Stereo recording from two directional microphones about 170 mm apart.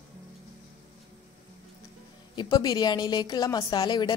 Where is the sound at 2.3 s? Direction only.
25° left (ahead or behind).